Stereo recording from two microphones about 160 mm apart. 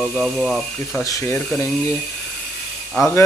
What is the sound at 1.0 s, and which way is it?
Speech, 20° left (ahead or behind).